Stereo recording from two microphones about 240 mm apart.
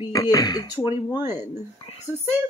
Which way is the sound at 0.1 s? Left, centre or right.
Centre.